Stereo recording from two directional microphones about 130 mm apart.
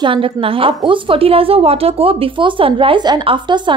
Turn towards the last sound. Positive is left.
turn(degrees=-35)  # may be behind; listen again after turning